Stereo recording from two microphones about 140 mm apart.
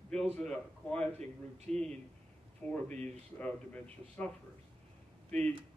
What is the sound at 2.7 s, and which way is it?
Speech, 10° left (ahead or behind).